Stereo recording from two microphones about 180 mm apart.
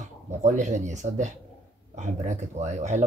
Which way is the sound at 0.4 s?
40° right (ahead or behind).